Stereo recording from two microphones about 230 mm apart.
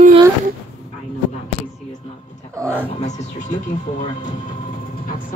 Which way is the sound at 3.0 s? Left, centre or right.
Left.